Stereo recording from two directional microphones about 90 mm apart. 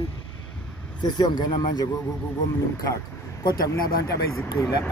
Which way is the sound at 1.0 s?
55° left (ahead or behind).